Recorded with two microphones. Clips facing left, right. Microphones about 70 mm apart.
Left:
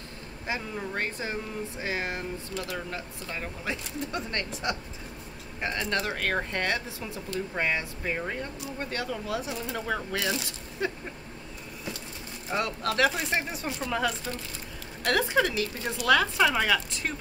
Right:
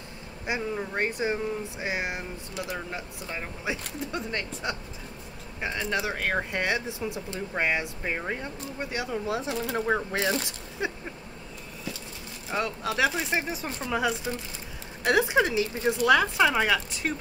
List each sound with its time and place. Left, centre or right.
0.5 s speech: centre
4.0 s speech: centre
9.2 s speech: right
10.8 s speech: centre
12.4 s speech: centre